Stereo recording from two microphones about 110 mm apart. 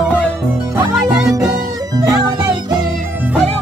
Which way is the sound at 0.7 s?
25° right (ahead or behind).